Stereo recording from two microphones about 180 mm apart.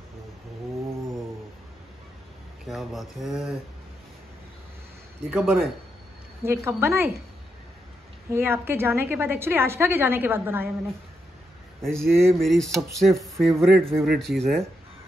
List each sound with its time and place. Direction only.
2.6 s speech: centre (ahead or behind)
5.3 s a woman's voice: 10° right (ahead or behind)
8.3 s a woman's voice: 15° right (ahead or behind)
11.8 s speech: centre (ahead or behind)